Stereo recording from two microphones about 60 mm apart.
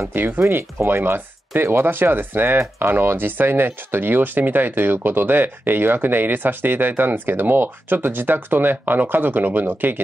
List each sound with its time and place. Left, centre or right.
0.4 s speech: right